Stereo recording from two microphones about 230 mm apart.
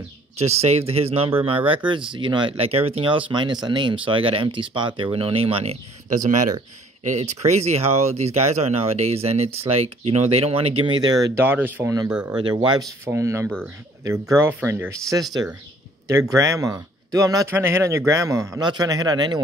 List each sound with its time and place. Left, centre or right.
0.4 s speech: right; by 12.4 s centre
12.4 s speech: centre